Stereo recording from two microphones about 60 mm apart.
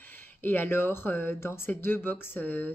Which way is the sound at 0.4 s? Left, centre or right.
Left.